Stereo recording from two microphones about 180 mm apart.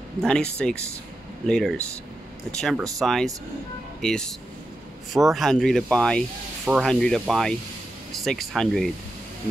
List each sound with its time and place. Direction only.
0.2 s speech: 5° left (ahead or behind)
6.6 s speech: 5° right (ahead or behind)